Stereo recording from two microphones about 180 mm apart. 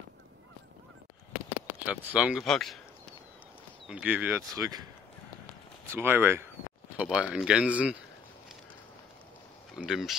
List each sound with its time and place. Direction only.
1.9 s speech: 5° right (ahead or behind)
3.8 s speech: 5° right (ahead or behind)
5.9 s speech: 10° right (ahead or behind)
9.8 s speech: centre (ahead or behind)